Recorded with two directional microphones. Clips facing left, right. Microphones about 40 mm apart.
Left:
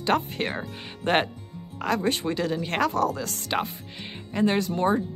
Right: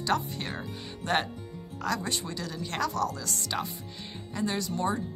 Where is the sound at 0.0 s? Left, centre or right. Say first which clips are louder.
Left 5 dB; left.